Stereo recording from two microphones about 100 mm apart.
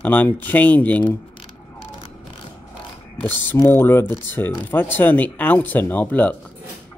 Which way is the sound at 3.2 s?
20° left (ahead or behind).